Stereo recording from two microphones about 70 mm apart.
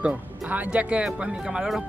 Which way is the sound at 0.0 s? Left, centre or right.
Right.